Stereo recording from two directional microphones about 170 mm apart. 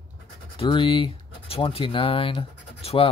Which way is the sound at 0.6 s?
30° left (ahead or behind).